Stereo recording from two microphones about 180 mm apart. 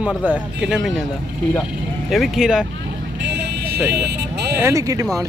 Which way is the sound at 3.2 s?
70° right (ahead or behind).